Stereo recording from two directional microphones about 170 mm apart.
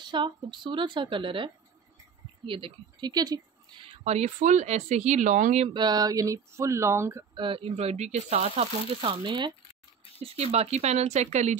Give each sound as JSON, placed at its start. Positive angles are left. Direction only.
{"t": 0.0, "sound": "speech", "side_deg": -25}
{"t": 4.0, "sound": "speech", "side_deg": -40}
{"t": 5.7, "sound": "speech", "side_deg": -25}
{"t": 7.3, "sound": "speech", "side_deg": -30}